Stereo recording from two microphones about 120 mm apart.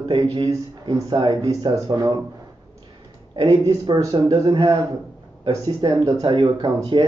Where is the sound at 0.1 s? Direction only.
40° right (ahead or behind).